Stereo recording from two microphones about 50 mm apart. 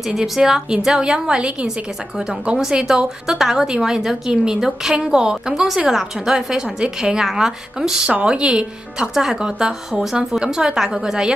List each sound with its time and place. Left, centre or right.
0.1 s a woman's voice: centre
2.7 s a woman's voice: centre